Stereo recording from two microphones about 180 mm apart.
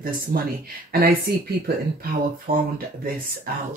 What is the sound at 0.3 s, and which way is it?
Speech, 60° right (ahead or behind).